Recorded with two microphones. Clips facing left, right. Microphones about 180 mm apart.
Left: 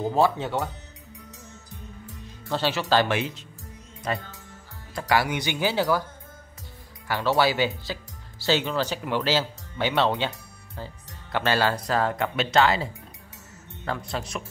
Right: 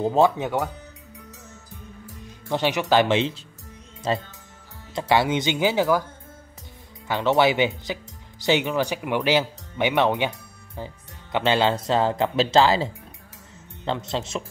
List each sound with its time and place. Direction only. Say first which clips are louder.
0.0 s speech: right 3 dB; 20° right (ahead or behind)
2.4 s speech: right 3 dB; 15° right (ahead or behind)
7.1 s speech: right 3 dB; 20° right (ahead or behind)